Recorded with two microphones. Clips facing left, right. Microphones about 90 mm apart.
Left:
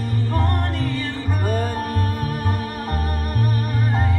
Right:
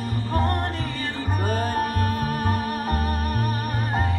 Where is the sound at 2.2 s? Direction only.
45° right (ahead or behind).